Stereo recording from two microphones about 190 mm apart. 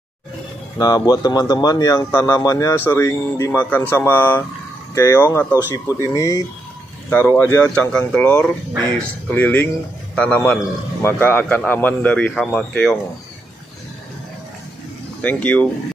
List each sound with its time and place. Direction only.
0.7 s speech: 20° left (ahead or behind)
15.2 s speech: 5° left (ahead or behind)